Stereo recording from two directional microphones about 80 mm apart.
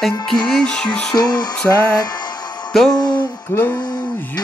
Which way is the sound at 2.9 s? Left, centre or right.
Left.